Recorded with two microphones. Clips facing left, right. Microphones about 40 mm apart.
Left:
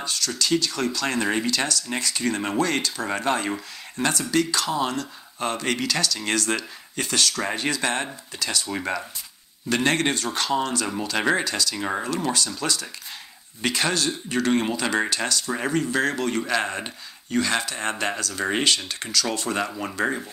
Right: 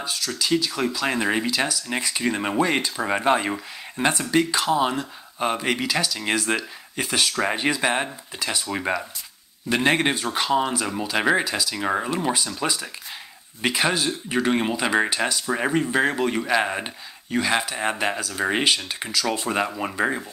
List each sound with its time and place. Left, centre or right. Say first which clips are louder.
0.0 s speech: even; centre